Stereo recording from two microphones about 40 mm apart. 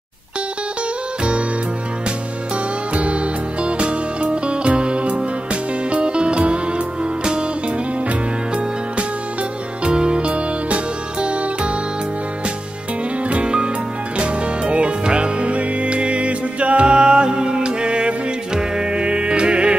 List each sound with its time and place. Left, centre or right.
2.5 s music: right
8.1 s music: right
13.3 s music: right